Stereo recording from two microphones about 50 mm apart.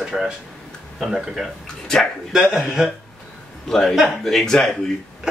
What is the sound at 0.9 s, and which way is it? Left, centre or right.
Speech, centre.